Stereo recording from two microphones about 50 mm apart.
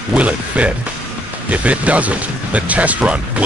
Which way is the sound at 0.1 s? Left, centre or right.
Right.